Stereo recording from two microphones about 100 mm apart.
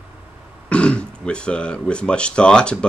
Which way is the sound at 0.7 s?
10° left (ahead or behind).